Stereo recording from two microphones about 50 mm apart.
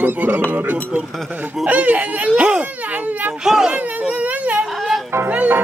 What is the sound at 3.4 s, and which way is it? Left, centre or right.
Baby cry, centre.